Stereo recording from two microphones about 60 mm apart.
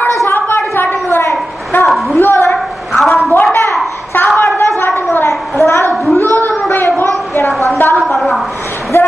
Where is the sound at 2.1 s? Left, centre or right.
Left.